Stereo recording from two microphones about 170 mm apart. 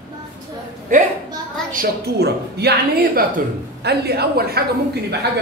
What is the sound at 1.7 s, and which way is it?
A woman's voice, 70° right (ahead or behind).